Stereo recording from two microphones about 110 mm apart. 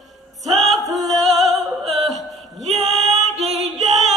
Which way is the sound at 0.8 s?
30° right (ahead or behind).